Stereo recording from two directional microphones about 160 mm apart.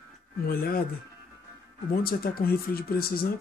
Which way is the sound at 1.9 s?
70° left (ahead or behind).